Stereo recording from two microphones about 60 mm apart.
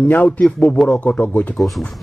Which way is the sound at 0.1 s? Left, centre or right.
Left.